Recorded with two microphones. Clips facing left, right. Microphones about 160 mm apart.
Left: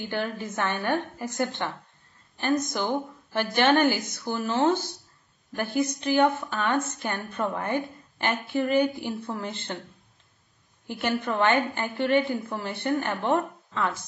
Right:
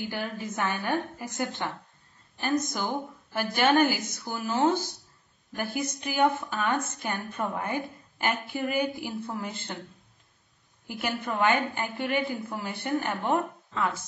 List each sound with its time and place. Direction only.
0.1 s a woman's voice: 10° right (ahead or behind)
2.4 s a woman's voice: 5° right (ahead or behind)
10.9 s a woman's voice: 5° right (ahead or behind)